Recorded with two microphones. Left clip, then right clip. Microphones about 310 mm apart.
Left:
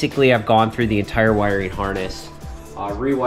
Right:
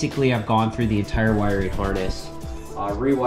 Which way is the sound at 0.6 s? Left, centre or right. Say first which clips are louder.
Left 5 dB; centre.